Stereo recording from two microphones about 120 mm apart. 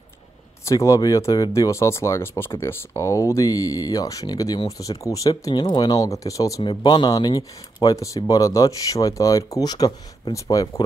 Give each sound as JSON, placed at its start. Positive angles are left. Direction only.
{"t": 0.7, "sound": "speech", "side_deg": 25}
{"t": 5.3, "sound": "speech", "side_deg": 40}
{"t": 6.6, "sound": "speech", "side_deg": 40}